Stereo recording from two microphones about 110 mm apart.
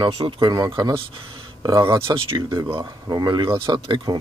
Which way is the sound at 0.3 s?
45° right (ahead or behind).